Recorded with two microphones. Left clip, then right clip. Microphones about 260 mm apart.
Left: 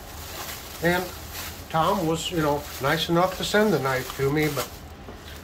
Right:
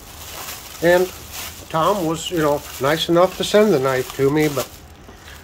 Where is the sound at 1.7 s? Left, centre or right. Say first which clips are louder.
Right 4 dB; right.